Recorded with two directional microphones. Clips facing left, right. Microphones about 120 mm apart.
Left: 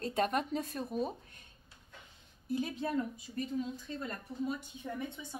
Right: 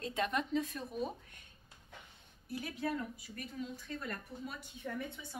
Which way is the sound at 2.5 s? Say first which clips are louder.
Left 4 dB; 25° left (ahead or behind).